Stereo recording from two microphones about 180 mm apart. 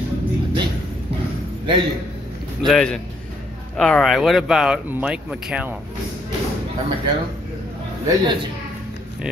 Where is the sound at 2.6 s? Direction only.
5° left (ahead or behind).